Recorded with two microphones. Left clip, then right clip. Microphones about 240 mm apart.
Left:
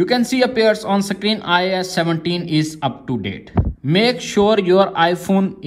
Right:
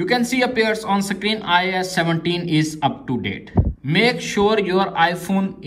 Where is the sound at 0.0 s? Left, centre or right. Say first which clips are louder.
Left 3 dB; left.